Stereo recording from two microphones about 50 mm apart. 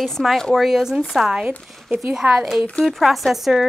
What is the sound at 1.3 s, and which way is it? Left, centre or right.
A woman's voice, centre.